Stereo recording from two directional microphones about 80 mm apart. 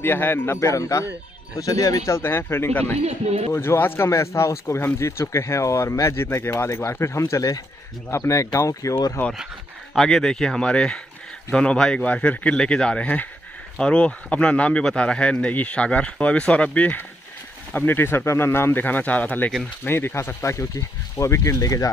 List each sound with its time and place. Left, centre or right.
0.0 s speech: left
9.9 s a man's voice: centre; by 21.8 s left